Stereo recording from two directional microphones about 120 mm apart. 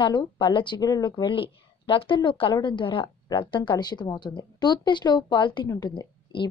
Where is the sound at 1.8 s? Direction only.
45° left (ahead or behind).